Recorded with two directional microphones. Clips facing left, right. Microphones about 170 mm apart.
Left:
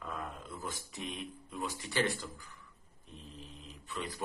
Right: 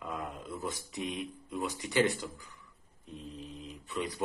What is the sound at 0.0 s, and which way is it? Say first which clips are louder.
Speech: right 3 dB; 15° right (ahead or behind).